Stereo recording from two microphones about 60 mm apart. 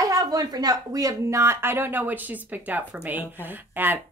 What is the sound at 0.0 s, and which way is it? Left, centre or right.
Speech, right.